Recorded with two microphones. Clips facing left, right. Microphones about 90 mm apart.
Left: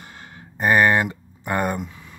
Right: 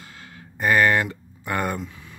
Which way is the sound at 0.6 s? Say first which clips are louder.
Left 2 dB; 20° left (ahead or behind).